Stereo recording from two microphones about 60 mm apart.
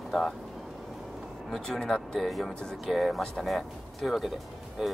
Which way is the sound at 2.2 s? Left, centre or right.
Centre.